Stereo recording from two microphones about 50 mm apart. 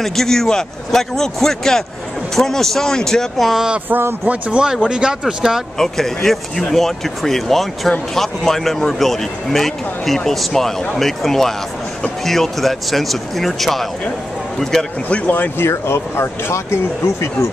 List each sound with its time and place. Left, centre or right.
0.0 s speech: centre
3.4 s speech: centre
4.3 s speech: centre
5.8 s speech: centre
15.0 s speech: left
15.6 s speech: left